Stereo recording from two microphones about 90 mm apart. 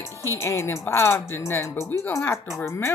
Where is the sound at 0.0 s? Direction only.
30° left (ahead or behind).